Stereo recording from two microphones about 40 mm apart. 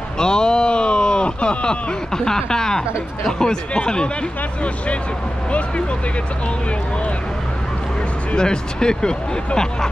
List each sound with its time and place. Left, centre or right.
0.2 s speech: centre
8.4 s speech: centre